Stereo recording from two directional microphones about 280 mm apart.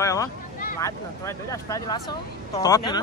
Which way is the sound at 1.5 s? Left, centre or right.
Centre.